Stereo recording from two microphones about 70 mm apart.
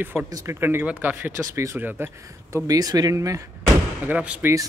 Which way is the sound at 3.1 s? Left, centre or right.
Right.